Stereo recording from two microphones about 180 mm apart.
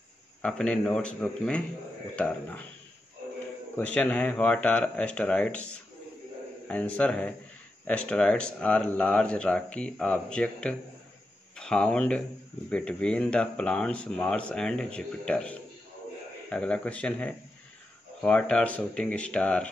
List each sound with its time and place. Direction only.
0.4 s speech: 5° left (ahead or behind)
3.7 s speech: 5° left (ahead or behind)